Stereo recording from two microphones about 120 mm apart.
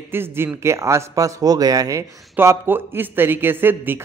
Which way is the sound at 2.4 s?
15° right (ahead or behind).